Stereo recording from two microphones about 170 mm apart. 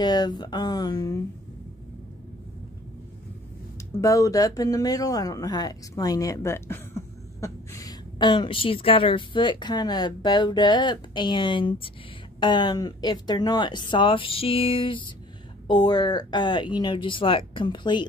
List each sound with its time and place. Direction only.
0.0 s speech: 25° left (ahead or behind)
4.0 s speech: 20° left (ahead or behind)